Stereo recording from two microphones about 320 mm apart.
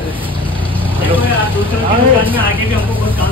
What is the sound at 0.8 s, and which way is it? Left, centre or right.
Speech, centre.